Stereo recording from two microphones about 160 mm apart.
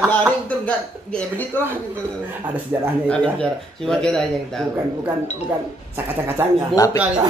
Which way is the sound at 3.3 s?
5° left (ahead or behind).